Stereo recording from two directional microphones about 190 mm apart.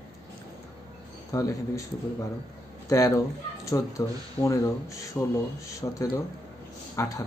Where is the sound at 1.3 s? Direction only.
15° left (ahead or behind).